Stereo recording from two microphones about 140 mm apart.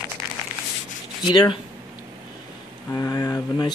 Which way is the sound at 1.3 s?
30° left (ahead or behind).